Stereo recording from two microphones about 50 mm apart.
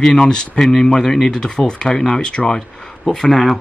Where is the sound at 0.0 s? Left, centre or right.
Centre.